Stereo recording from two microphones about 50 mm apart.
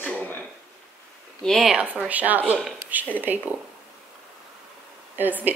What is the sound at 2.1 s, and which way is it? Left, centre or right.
A woman's voice, right.